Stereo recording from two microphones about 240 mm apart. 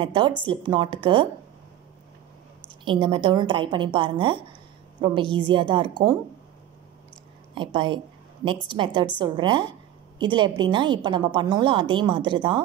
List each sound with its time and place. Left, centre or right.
0.0 s a woman's voice: centre
2.8 s a woman's voice: centre
7.5 s a woman's voice: centre